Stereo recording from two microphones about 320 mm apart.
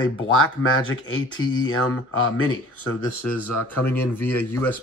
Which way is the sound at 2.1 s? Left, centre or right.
Left.